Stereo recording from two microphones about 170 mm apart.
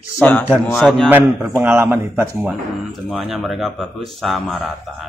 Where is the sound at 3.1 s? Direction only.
Centre (ahead or behind).